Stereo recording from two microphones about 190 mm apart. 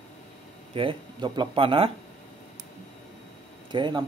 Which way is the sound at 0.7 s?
25° right (ahead or behind).